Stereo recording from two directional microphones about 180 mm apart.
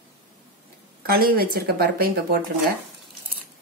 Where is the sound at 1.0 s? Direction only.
55° right (ahead or behind).